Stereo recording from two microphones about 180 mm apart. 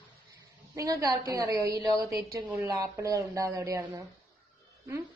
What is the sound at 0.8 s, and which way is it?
A woman's voice, 20° right (ahead or behind).